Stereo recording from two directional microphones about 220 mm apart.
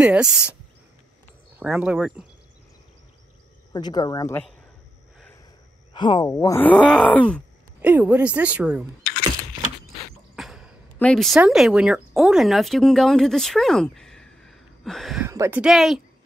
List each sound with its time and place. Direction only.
0.0 s speech: 5° right (ahead or behind)
1.6 s speech: 5° right (ahead or behind)
3.7 s speech: 20° left (ahead or behind)
5.9 s speech: 20° left (ahead or behind); by 7.4 s 5° left (ahead or behind)
7.8 s speech: 5° right (ahead or behind)
10.3 s speech: centre (ahead or behind)
15.2 s speech: 10° right (ahead or behind)